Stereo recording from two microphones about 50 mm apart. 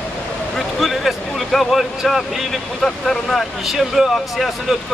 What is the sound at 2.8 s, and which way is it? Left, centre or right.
Speech, centre.